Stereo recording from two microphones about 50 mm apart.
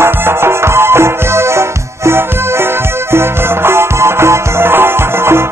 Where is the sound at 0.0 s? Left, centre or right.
Right.